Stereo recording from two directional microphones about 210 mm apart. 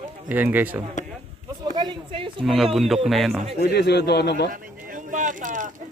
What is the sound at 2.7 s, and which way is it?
Speech, centre (ahead or behind).